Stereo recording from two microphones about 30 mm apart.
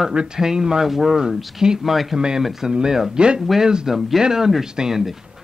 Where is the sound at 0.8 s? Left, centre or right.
Centre.